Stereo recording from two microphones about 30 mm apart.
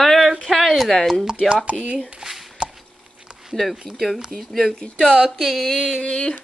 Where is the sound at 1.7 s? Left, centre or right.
Left.